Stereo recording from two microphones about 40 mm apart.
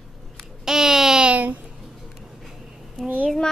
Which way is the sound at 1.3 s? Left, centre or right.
Right.